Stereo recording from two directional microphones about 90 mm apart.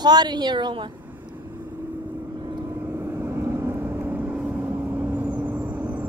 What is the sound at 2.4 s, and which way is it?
Vehicle, 55° right (ahead or behind).